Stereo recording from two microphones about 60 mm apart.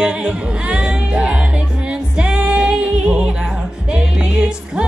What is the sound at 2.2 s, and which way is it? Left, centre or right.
A capella, centre.